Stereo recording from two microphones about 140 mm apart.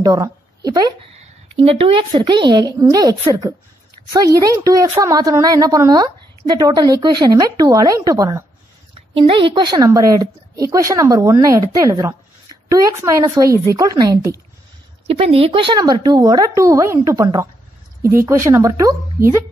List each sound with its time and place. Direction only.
0.0 s a woman's voice: 25° right (ahead or behind)
1.2 s a woman's voice: 45° right (ahead or behind); by 8.5 s 25° right (ahead or behind)
9.1 s a woman's voice: 40° right (ahead or behind); by 14.4 s 25° right (ahead or behind)
15.0 s a woman's voice: 45° right (ahead or behind); by 19.4 s 20° right (ahead or behind)